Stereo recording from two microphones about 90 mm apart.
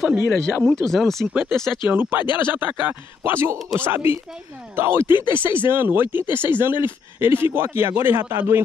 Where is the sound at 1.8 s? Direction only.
20° right (ahead or behind).